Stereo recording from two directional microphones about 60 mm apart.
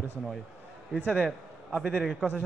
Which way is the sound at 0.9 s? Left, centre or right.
Centre.